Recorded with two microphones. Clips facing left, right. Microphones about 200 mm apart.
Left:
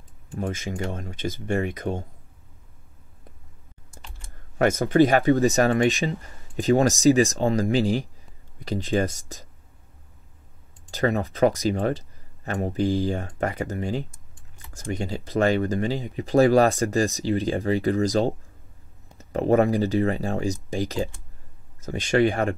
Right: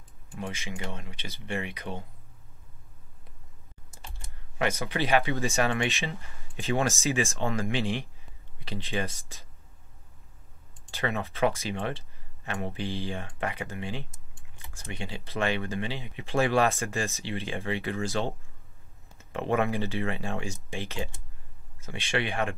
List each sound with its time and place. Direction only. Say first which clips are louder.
0.3 s speech: left 7 dB; 45° left (ahead or behind)
4.6 s speech: left 11 dB; 45° left (ahead or behind)
10.9 s speech: left 8 dB; 40° left (ahead or behind)